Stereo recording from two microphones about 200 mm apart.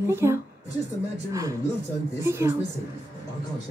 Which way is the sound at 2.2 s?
15° right (ahead or behind).